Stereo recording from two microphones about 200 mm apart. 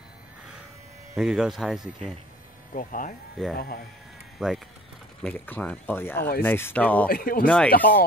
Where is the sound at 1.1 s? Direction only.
Centre (ahead or behind).